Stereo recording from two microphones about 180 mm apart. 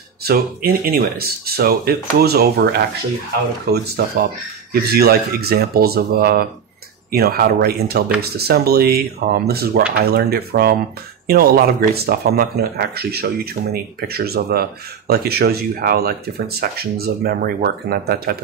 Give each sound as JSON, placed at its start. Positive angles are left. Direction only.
{"t": 0.2, "sound": "speech", "side_deg": -55}